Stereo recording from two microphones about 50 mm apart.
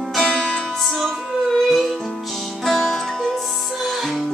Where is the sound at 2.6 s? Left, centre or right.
Centre.